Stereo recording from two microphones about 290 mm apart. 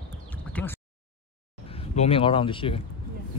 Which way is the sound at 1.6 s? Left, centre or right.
Centre.